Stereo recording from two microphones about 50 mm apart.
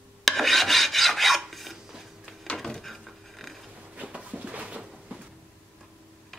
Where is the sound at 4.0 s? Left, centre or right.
Right.